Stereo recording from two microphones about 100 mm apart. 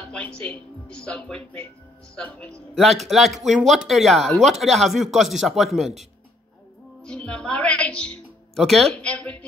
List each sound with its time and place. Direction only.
0.1 s speech: 10° left (ahead or behind)
2.7 s speech: centre (ahead or behind)
7.2 s a woman's voice: 10° left (ahead or behind)
8.9 s speech: 10° left (ahead or behind)